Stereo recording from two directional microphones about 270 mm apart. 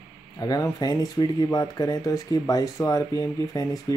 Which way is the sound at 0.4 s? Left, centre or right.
Centre.